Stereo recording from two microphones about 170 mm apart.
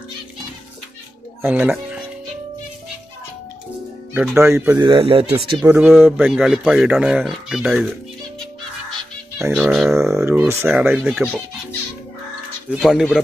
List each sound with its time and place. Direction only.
1.4 s speech: 10° right (ahead or behind)
4.1 s speech: 10° right (ahead or behind)
4.8 s speech: 30° right (ahead or behind)
5.6 s speech: 10° right (ahead or behind)
9.4 s speech: 5° right (ahead or behind)
10.2 s speech: 10° right (ahead or behind)
12.6 s speech: 5° right (ahead or behind)